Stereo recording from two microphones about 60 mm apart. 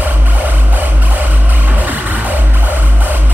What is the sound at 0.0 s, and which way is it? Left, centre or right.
Music, right.